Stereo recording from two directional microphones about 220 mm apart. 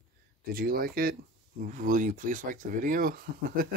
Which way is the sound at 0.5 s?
45° right (ahead or behind).